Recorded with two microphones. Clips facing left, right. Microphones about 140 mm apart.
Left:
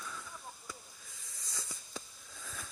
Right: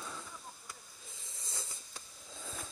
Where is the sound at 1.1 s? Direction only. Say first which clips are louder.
Right 3 dB; 25° right (ahead or behind).